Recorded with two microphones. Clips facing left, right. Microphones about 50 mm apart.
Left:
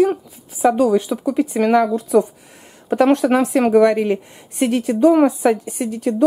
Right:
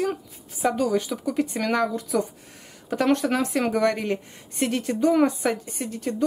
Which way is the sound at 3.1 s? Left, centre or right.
Centre.